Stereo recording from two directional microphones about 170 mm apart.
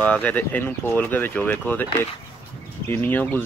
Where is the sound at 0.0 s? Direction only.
10° left (ahead or behind).